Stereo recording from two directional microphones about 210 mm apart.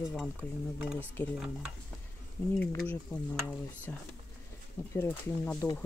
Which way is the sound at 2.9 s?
5° left (ahead or behind).